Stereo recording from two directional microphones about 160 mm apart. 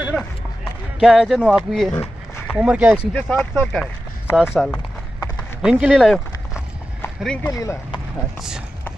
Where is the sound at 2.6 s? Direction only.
10° right (ahead or behind).